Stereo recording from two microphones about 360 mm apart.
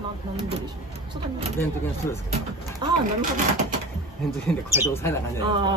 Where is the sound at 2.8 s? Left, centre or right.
Right.